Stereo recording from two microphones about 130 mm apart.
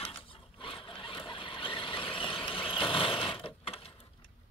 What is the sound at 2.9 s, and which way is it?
Mechanisms, 40° left (ahead or behind).